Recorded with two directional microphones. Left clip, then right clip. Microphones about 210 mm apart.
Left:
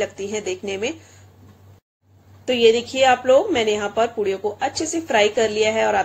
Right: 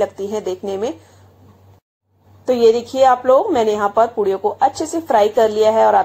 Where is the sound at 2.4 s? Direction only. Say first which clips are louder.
Right 3 dB; 15° right (ahead or behind).